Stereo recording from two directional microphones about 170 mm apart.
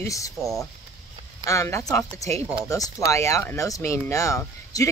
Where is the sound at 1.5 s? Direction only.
15° left (ahead or behind).